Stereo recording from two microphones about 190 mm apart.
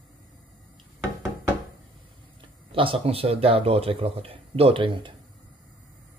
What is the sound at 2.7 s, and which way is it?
Speech, 30° right (ahead or behind).